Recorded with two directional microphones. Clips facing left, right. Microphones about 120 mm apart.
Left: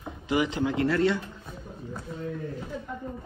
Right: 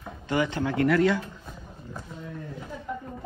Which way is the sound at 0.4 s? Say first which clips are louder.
Right 1 dB; 20° left (ahead or behind).